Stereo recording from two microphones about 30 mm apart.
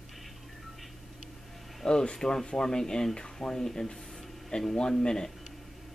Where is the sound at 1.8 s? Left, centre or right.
Left.